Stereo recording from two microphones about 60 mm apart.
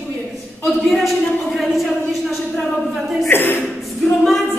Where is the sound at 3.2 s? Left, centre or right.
Left.